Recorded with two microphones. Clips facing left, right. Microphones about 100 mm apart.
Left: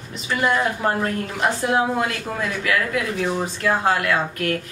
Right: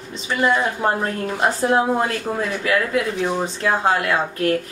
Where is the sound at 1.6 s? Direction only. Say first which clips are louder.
Right 3 dB; 35° right (ahead or behind).